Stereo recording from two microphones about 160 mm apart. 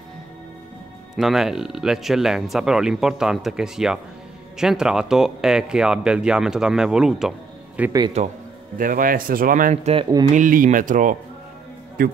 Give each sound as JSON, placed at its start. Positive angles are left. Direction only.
{"t": 1.1, "sound": "speech", "side_deg": 0}
{"t": 8.2, "sound": "speech", "side_deg": -45}
{"t": 8.7, "sound": "speech", "side_deg": -60}